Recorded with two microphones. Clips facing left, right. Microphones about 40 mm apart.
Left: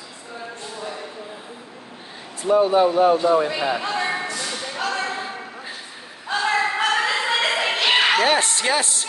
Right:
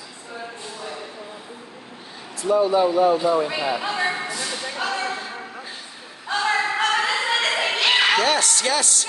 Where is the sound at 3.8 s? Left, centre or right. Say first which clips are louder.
Even; centre.